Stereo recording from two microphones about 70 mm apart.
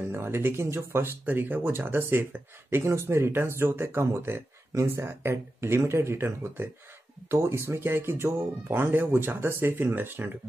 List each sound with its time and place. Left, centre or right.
0.1 s speech: right
1.2 s speech: right